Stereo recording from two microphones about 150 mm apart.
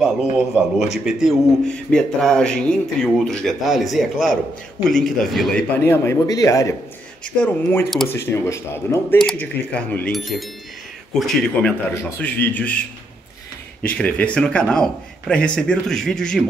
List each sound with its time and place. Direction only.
0.0 s speech: 5° right (ahead or behind)
5.7 s a man's voice: 15° left (ahead or behind)
9.2 s a man's voice: 5° left (ahead or behind)
11.9 s a man's voice: 15° left (ahead or behind)
13.8 s a man's voice: 10° left (ahead or behind)